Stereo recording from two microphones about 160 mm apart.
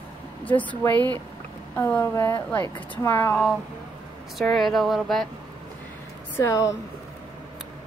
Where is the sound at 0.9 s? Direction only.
25° right (ahead or behind).